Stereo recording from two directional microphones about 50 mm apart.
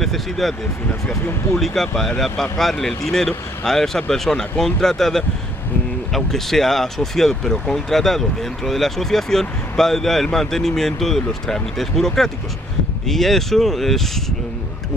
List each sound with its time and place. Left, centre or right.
0.0 s speech: centre
1.6 s speech: centre